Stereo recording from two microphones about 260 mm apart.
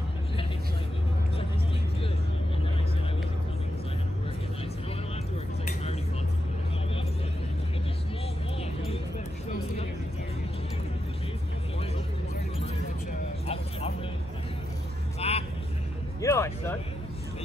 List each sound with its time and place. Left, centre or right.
13.5 s music: left
15.1 s vehicle: left
16.2 s music: centre